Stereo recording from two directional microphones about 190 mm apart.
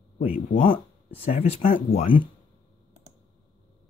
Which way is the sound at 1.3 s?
40° left (ahead or behind).